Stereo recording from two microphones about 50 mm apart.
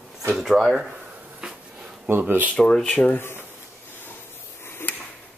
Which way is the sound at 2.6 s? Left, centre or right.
Centre.